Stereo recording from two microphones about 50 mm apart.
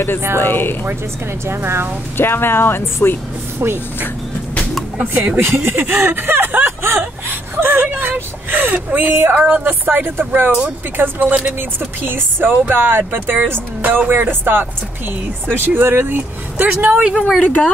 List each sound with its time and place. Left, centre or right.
0.4 s speech: left
1.5 s speech: right
2.1 s speech: left
3.5 s speech: right
5.0 s speech: right
5.4 s speech: right
7.2 s whimper: right
8.0 s speech: right
15.7 s speech: right
17.0 s speech: centre
17.4 s speech: left